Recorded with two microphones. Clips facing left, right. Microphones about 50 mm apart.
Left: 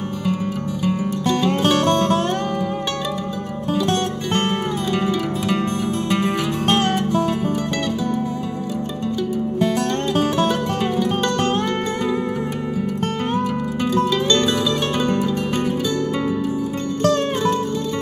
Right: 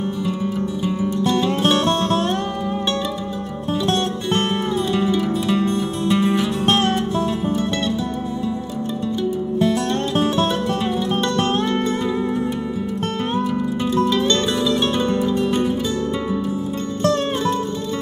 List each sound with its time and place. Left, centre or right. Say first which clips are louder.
5.7 s music: right 1 dB; left
14.7 s music: right 1 dB; left